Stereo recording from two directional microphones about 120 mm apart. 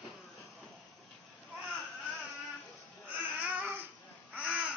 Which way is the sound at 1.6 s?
Centre (ahead or behind).